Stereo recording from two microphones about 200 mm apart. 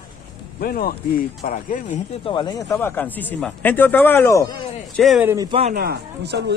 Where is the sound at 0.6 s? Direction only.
45° left (ahead or behind).